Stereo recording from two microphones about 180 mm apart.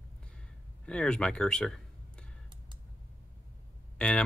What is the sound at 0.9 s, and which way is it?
Speech, 5° left (ahead or behind).